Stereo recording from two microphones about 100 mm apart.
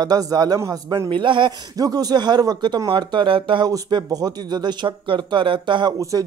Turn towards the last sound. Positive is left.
turn(degrees=-55)  # may be behind; listen again after turning